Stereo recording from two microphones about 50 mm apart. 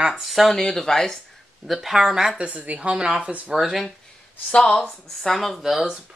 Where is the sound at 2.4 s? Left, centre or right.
Right.